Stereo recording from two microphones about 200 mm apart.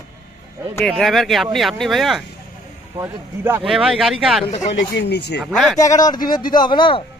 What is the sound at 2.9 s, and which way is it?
Speech, 10° right (ahead or behind).